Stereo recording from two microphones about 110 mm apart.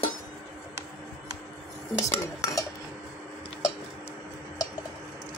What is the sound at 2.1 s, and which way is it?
Stir, 30° left (ahead or behind).